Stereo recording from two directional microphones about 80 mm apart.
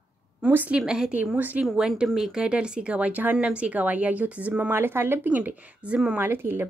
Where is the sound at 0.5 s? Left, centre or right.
Right.